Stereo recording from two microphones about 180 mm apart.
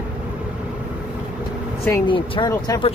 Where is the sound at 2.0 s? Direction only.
25° left (ahead or behind).